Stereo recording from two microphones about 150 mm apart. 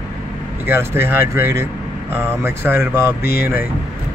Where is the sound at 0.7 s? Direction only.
15° right (ahead or behind).